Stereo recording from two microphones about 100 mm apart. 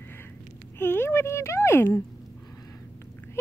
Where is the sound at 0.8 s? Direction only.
20° left (ahead or behind).